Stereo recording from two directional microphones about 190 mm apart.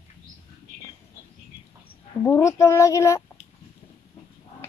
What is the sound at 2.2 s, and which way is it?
Speech, 15° left (ahead or behind).